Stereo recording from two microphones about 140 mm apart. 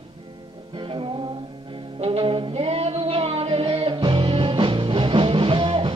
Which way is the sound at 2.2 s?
45° right (ahead or behind).